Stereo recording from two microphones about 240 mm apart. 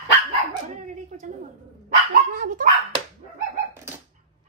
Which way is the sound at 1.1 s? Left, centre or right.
Right.